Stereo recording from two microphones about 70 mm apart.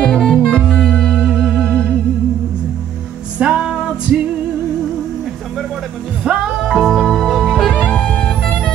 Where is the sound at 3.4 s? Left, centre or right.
Centre.